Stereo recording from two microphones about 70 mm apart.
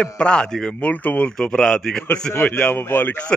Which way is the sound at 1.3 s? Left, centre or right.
Centre.